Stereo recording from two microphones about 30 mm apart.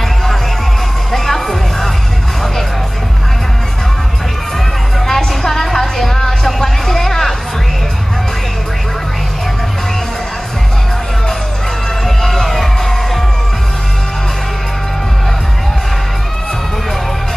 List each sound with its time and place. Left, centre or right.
1.1 s music: centre
5.0 s music: centre
12.2 s music: centre